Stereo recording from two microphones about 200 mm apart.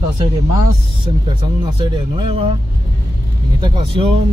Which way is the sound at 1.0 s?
25° right (ahead or behind).